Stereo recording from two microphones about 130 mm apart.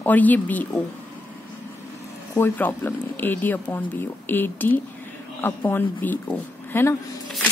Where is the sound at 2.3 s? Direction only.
15° left (ahead or behind).